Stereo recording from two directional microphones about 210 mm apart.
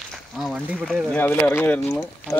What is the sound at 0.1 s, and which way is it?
Speech, centre (ahead or behind).